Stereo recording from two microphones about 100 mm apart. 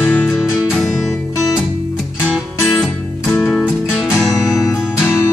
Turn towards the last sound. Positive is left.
turn(degrees=0)  # may be behind; listen again after turning